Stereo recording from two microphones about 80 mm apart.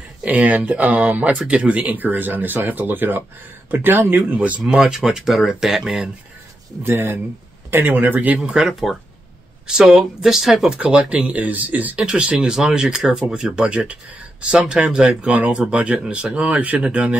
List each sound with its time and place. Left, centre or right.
0.2 s speech: centre
4.6 s speech: centre
6.8 s speech: right
8.4 s speech: centre